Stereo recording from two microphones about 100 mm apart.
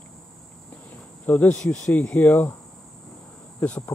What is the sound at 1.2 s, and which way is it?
Speech, 15° left (ahead or behind).